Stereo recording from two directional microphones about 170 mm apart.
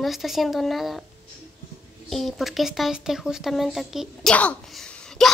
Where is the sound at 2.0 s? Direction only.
Centre (ahead or behind).